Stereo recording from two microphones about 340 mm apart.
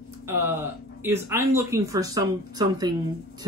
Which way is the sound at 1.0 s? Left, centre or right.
Centre.